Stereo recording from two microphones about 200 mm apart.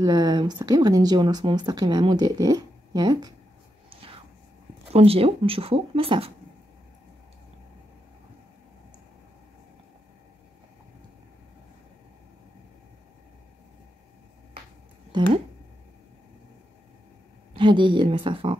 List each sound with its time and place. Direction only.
0.0 s speech: 20° right (ahead or behind)
3.9 s whispering: 25° right (ahead or behind)
4.9 s speech: 30° right (ahead or behind)
15.1 s speech: 20° right (ahead or behind)
17.6 s speech: 25° right (ahead or behind)